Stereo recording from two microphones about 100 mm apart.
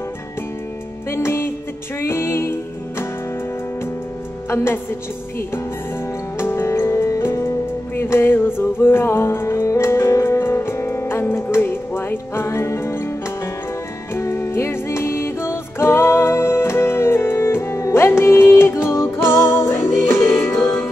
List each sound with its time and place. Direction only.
1.1 s music: 25° left (ahead or behind)
6.3 s music: 25° left (ahead or behind)
14.1 s music: 30° left (ahead or behind)